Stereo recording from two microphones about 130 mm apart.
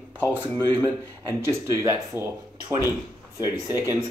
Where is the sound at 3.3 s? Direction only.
20° right (ahead or behind).